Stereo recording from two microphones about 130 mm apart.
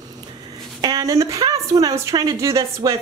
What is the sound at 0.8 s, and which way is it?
A woman's voice, 25° right (ahead or behind).